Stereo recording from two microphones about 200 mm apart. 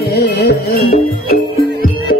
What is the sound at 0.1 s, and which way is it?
Music, 55° left (ahead or behind).